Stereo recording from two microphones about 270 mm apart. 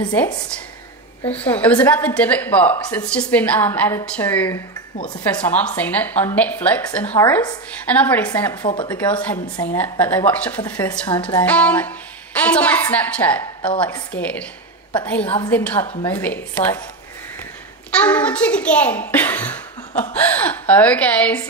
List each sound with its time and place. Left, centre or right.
0.1 s a woman's voice: centre
8.6 s a woman's voice: centre
8.9 s a woman's voice: centre
17.9 s a woman's voice: centre